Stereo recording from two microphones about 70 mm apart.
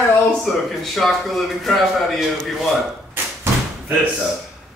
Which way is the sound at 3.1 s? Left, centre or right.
Right.